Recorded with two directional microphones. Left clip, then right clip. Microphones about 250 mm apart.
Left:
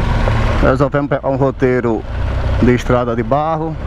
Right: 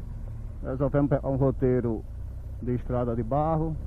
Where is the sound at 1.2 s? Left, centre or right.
Left.